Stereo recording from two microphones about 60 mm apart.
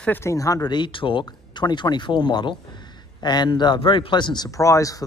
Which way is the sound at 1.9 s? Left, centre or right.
Left.